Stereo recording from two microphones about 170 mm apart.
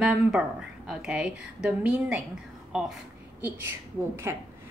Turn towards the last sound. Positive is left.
turn(degrees=-15)  # may be behind; listen again after turning